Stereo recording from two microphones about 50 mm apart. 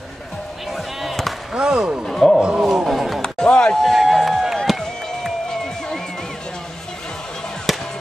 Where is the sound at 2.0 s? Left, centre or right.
Centre.